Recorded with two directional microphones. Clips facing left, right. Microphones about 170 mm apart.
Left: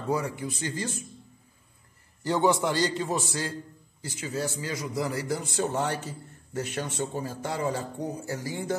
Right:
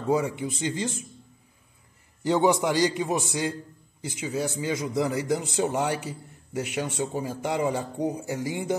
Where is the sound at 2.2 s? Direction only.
15° right (ahead or behind).